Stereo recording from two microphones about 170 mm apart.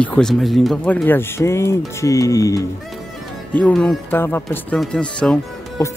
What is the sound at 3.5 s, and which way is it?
Speech, 10° left (ahead or behind).